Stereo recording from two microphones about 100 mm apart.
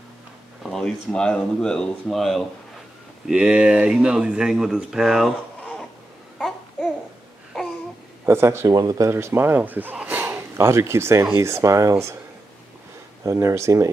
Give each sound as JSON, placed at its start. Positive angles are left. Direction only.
{"t": 0.7, "sound": "speech", "side_deg": 5}
{"t": 6.3, "sound": "babbling", "side_deg": 5}
{"t": 8.3, "sound": "speech", "side_deg": -25}
{"t": 13.2, "sound": "speech", "side_deg": -30}